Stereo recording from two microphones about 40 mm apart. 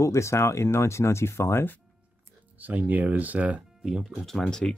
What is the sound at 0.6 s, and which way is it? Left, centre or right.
Speech, left.